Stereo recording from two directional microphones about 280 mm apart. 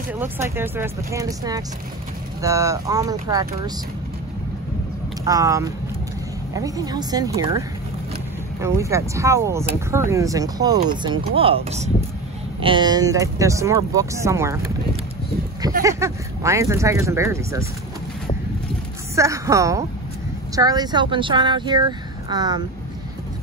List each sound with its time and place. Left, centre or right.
0.1 s speech: centre
5.2 s speech: centre
15.8 s speech: centre
19.1 s speech: centre